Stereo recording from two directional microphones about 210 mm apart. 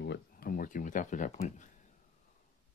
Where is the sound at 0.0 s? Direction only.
50° left (ahead or behind).